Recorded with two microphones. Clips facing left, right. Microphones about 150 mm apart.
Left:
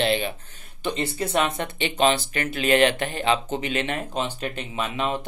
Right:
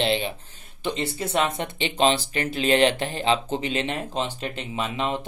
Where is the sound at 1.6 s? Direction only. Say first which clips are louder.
Even; 25° right (ahead or behind).